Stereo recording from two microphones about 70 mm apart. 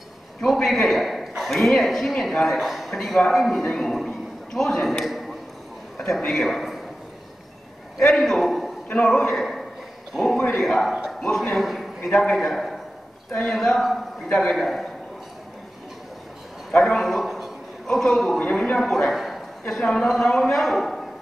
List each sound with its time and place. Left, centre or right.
0.4 s a man's voice: centre
8.0 s a man's voice: centre
8.8 s a man's voice: centre
16.7 s a sound: centre
18.4 s a man's voice: centre
18.8 s a man's voice: centre
19.6 s a man's voice: centre